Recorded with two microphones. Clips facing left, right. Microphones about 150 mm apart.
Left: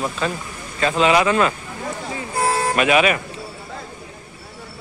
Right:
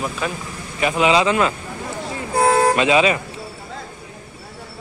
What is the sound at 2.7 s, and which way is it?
Speech, 20° right (ahead or behind).